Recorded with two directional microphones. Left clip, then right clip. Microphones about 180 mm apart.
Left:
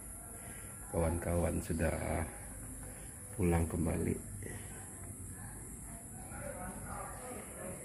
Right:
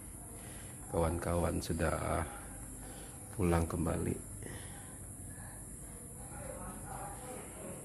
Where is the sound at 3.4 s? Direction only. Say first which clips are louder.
Right 1 dB; 20° right (ahead or behind).